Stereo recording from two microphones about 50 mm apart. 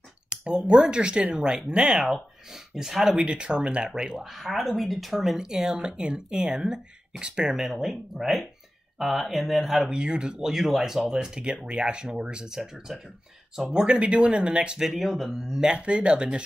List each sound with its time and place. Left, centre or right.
0.3 s speech: centre
2.0 s speech: centre
3.2 s speech: centre
4.3 s speech: centre
9.9 s speech: centre
14.8 s speech: centre